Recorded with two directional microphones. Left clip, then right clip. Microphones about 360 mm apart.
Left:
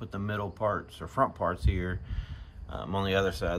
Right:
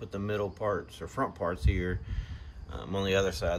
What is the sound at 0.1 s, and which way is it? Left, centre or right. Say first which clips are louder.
Speech: right 2 dB; centre.